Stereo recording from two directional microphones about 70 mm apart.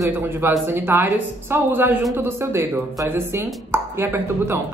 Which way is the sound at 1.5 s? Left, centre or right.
Right.